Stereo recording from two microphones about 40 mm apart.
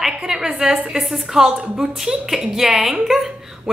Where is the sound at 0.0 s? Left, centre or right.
Centre.